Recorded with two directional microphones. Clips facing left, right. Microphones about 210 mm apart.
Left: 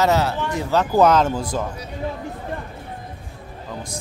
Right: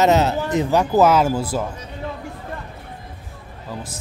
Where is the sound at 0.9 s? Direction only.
5° right (ahead or behind).